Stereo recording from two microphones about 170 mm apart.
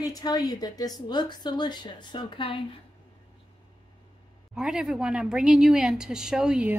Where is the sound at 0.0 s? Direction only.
20° left (ahead or behind).